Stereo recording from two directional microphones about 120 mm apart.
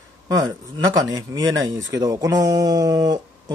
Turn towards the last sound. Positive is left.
turn(degrees=-30)  # may be behind; listen again after turning